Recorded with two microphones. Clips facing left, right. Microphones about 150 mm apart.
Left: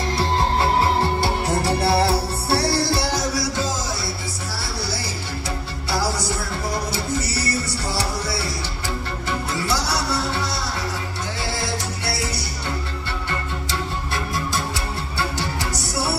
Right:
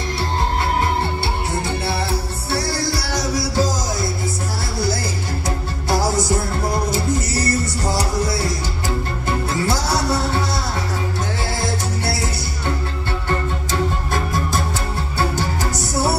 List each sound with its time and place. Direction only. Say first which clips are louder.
0.6 s music: left 1 dB; 35° left (ahead or behind)
3.3 s music: right 4 dB; 40° right (ahead or behind)
5.9 s music: right 5 dB; 45° right (ahead or behind)
9.7 s music: right 3 dB; 50° right (ahead or behind)
13.7 s music: right 6 dB; 45° right (ahead or behind)